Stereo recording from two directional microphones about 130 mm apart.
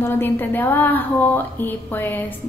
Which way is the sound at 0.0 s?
15° left (ahead or behind).